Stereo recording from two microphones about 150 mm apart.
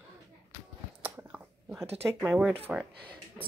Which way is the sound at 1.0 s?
10° right (ahead or behind).